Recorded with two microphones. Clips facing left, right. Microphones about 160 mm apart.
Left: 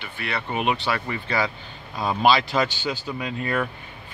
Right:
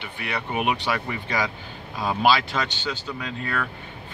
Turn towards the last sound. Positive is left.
turn(degrees=15)  # may be behind; listen again after turning